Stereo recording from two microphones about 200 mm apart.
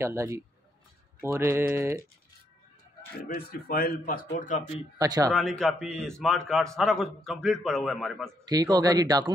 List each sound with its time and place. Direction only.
0.0 s mantra: 15° right (ahead or behind)
3.3 s a man's voice: 45° left (ahead or behind)
4.9 s speech: 20° right (ahead or behind)
5.3 s a man's voice: 5° left (ahead or behind)
8.5 s speech: 20° right (ahead or behind)